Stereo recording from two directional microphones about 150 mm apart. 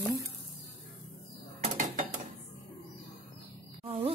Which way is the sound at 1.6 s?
55° right (ahead or behind).